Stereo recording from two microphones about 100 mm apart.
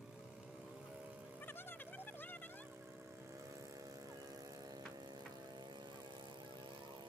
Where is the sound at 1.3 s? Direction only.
20° left (ahead or behind).